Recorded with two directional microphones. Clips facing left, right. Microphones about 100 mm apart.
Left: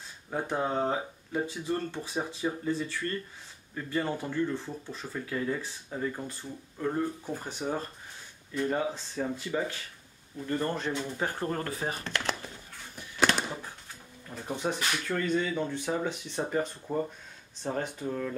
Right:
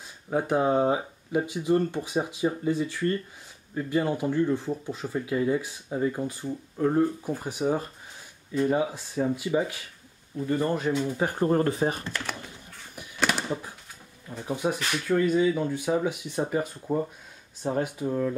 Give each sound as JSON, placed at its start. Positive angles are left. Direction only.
{"t": 0.3, "sound": "speech", "side_deg": -15}
{"t": 13.3, "sound": "a sound", "side_deg": -10}
{"t": 14.4, "sound": "speech", "side_deg": -5}